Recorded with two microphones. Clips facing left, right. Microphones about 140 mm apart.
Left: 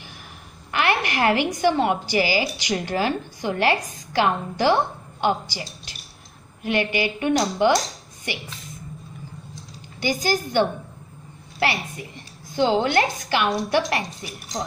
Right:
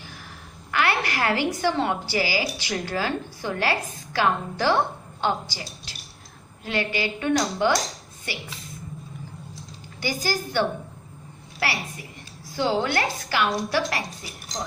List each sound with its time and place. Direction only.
0.7 s a woman's voice: 20° left (ahead or behind)
9.9 s a woman's voice: 20° left (ahead or behind)
12.4 s a woman's voice: 20° left (ahead or behind)